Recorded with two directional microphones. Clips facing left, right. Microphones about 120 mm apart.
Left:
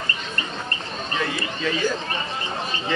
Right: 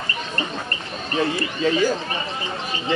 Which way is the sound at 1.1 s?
30° right (ahead or behind).